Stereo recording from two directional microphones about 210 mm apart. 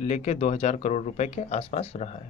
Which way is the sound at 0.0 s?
30° left (ahead or behind).